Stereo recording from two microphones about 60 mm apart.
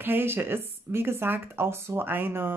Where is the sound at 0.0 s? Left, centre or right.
Right.